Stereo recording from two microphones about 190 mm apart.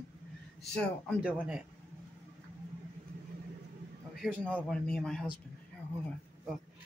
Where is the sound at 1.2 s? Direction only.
5° right (ahead or behind).